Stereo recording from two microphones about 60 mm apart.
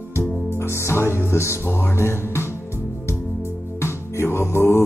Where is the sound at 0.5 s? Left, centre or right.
Left.